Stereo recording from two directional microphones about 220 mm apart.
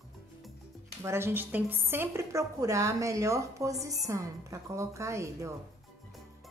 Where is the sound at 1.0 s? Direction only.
10° right (ahead or behind).